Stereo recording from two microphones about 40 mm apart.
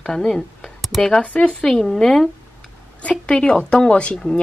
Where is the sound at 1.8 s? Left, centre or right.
Centre.